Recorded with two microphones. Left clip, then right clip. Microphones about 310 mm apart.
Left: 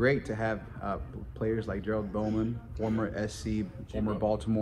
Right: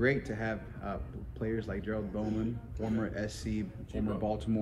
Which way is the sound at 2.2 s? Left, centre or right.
Left.